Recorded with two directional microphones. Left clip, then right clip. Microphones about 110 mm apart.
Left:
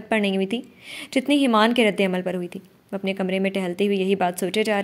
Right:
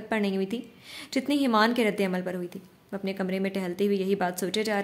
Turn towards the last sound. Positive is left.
turn(degrees=35)  # may be behind; listen again after turning